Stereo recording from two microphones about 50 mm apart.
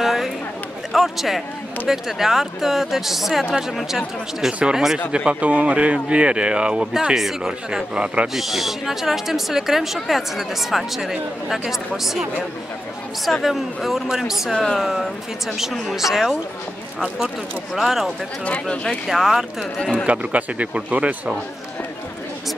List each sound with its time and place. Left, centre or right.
0.0 s a sound: centre
0.9 s a man's voice: centre
4.5 s a woman's voice: centre
5.4 s speech: right
7.2 s a woman's voice: centre
8.4 s speech: centre
14.5 s speech: centre
14.8 s speech: centre
17.7 s speech: centre
18.4 s speech: left
19.0 s speech: centre
19.8 s speech: centre
20.1 s speech: right